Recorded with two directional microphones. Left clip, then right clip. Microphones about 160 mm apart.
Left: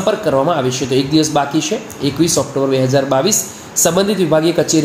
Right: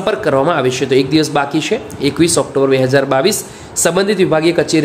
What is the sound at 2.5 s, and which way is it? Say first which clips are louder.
Speech: right 3 dB; 25° right (ahead or behind).